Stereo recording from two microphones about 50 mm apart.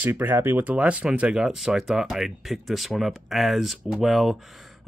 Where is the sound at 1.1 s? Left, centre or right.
Centre.